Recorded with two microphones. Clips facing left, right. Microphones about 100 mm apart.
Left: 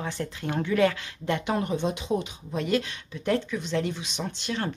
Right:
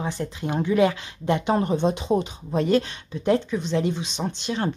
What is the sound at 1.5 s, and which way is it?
Speech, 30° right (ahead or behind).